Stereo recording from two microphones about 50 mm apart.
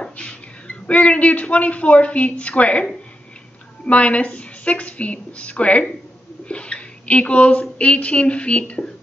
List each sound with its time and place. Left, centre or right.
0.0 s a woman's voice: left